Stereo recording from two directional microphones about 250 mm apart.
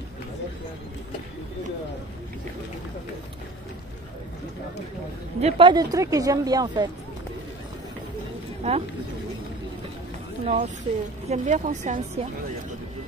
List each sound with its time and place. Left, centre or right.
5.4 s speech: centre
8.6 s a woman's voice: right
10.4 s a woman's voice: right